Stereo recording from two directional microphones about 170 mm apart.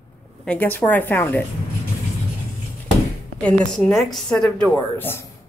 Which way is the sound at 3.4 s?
10° left (ahead or behind).